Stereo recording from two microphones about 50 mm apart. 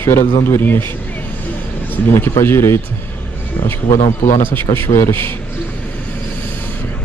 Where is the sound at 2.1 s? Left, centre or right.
Left.